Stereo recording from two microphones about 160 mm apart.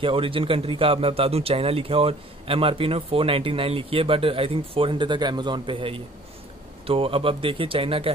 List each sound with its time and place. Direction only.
0.0 s speech: 35° right (ahead or behind)